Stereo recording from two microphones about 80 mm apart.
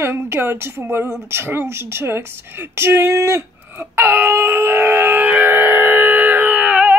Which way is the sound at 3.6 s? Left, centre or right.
Right.